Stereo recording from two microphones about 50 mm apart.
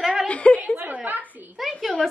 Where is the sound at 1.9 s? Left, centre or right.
Centre.